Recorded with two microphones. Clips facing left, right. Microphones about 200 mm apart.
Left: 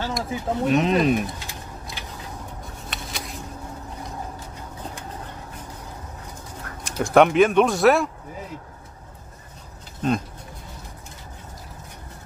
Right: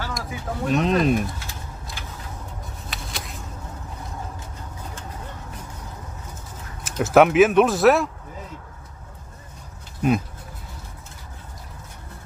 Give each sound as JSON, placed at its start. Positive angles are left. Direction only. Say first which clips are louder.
{"t": 0.2, "sound": "speech", "louder": "left 5 dB", "side_deg": 20}
{"t": 0.7, "sound": "speech", "louder": "even", "side_deg": 0}
{"t": 2.9, "sound": "vehicle", "louder": "left 1 dB", "side_deg": 0}
{"t": 6.8, "sound": "speech", "louder": "right 1 dB", "side_deg": -5}
{"t": 10.0, "sound": "speech", "louder": "right 2 dB", "side_deg": -10}